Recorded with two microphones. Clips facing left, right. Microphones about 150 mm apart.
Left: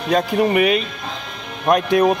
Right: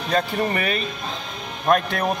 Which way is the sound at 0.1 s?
15° left (ahead or behind).